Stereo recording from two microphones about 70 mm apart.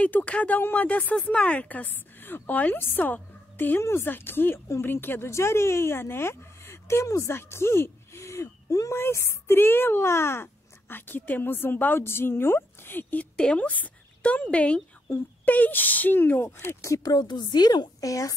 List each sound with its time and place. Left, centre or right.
0.0 s a woman's voice: centre; by 8.9 s left
8.9 s a woman's voice: left
16.8 s speech: left
17.1 s a woman's voice: left
18.0 s speech: left